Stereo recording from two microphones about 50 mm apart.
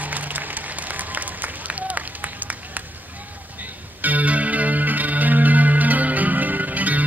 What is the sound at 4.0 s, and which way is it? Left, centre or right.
Music, right.